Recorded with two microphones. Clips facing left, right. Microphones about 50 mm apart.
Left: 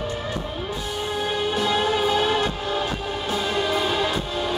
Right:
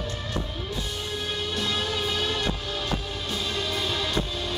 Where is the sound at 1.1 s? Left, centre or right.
Centre.